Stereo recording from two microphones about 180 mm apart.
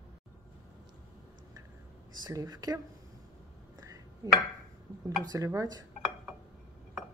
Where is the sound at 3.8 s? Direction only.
20° right (ahead or behind).